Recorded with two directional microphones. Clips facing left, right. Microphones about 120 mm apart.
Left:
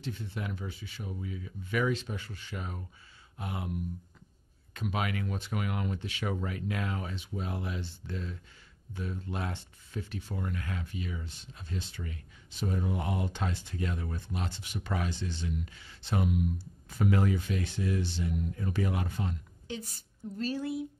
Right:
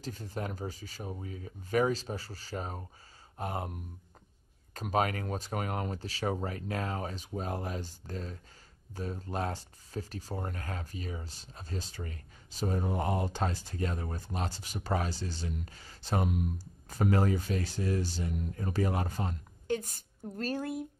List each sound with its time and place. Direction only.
0.0 s speech: 40° right (ahead or behind)
4.7 s speech: 40° right (ahead or behind)